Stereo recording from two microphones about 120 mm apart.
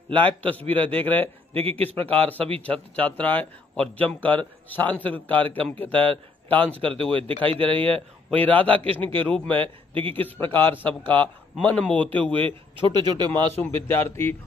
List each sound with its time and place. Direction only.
0.1 s a man's voice: 15° left (ahead or behind)
1.5 s speech: 55° right (ahead or behind)
2.0 s a man's voice: 15° left (ahead or behind)
6.8 s speech: 50° right (ahead or behind)
8.5 s a man's voice: 10° left (ahead or behind)
9.5 s speech: 50° right (ahead or behind)
10.1 s a man's voice: 15° left (ahead or behind)
12.4 s speech: 45° right (ahead or behind)
13.3 s a man's voice: 15° left (ahead or behind)